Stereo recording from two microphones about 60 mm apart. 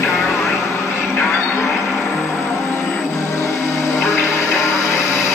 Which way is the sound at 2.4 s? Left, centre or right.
Left.